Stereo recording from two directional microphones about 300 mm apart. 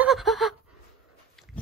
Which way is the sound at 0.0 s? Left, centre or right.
Centre.